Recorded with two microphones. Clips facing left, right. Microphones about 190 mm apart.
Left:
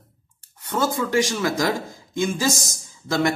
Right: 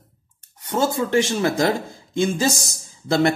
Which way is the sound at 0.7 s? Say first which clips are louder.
Right 2 dB; 25° right (ahead or behind).